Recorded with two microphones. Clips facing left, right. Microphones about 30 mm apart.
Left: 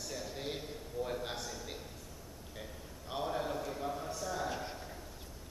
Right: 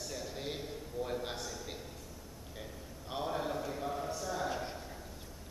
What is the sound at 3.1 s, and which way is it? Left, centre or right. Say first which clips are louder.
A man's voice: even; centre.